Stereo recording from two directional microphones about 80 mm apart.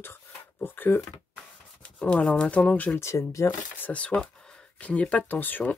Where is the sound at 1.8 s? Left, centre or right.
Centre.